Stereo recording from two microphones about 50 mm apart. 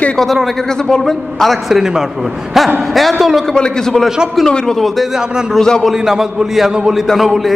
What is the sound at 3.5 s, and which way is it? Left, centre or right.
Speech, centre.